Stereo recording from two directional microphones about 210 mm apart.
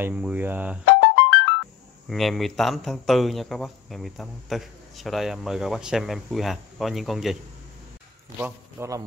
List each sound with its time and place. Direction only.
0.0 s speech: 5° right (ahead or behind)
1.0 s music: 55° left (ahead or behind)
2.0 s speech: centre (ahead or behind)
8.4 s speech: 10° right (ahead or behind)